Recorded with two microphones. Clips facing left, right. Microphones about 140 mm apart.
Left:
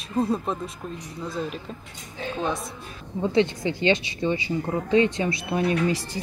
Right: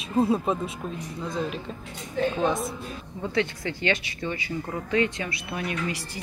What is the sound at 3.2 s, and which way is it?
Speech, 20° left (ahead or behind).